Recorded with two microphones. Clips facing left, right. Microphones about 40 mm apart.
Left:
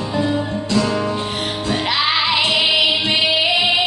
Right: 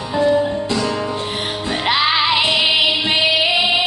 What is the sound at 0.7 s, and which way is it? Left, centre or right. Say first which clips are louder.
Music: left 2 dB; centre.